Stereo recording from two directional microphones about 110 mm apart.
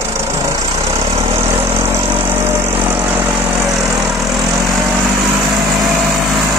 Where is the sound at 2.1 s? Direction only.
20° right (ahead or behind).